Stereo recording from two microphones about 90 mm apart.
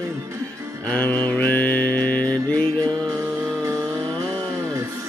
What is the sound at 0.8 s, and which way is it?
Mantra, 20° left (ahead or behind).